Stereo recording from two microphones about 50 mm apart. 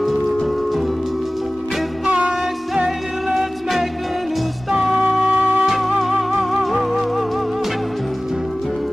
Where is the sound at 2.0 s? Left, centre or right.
Centre.